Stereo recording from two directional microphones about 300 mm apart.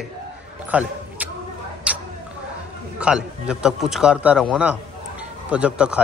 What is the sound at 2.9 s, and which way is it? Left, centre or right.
A man's voice, centre.